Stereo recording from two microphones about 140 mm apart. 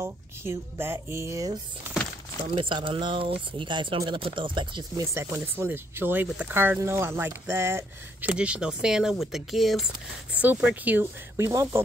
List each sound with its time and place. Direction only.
0.0 s speech: 15° right (ahead or behind)
2.4 s speech: 35° right (ahead or behind)
5.1 s speech: 20° right (ahead or behind)
8.3 s speech: 10° right (ahead or behind)